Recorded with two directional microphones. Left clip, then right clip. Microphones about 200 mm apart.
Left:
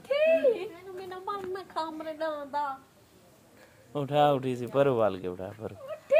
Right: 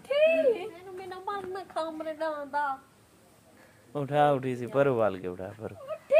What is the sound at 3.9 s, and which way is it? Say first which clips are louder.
Speech: even; centre (ahead or behind).